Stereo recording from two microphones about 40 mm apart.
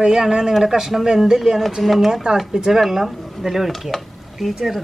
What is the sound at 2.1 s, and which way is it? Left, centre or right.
Speech, centre.